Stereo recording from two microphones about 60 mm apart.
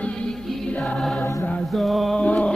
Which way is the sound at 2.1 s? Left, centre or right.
Centre.